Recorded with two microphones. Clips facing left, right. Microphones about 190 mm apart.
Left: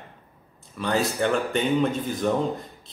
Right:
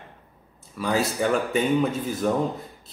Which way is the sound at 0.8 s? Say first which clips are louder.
Even; 5° right (ahead or behind).